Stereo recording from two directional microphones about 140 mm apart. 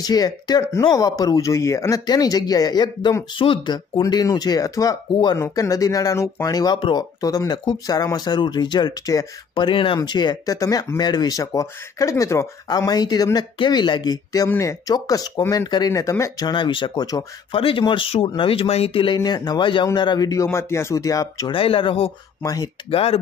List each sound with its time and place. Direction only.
0.0 s speech: 30° left (ahead or behind)
17.6 s speech: 40° left (ahead or behind)
19.1 s speech: 30° left (ahead or behind)
21.5 s speech: 40° left (ahead or behind)
22.4 s speech: 25° left (ahead or behind)
22.8 s speech: 45° left (ahead or behind)